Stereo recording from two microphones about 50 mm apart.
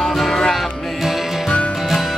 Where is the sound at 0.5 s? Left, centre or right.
Centre.